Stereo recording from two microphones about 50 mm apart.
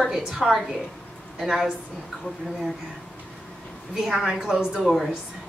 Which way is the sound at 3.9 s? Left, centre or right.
Centre.